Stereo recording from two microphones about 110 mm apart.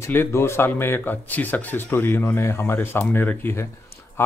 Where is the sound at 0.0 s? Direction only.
20° left (ahead or behind).